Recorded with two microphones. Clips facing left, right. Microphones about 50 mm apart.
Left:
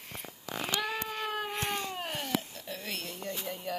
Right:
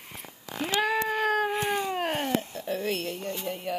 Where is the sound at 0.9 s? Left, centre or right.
Right.